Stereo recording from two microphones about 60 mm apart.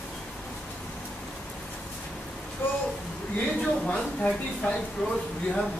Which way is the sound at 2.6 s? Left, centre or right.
Left.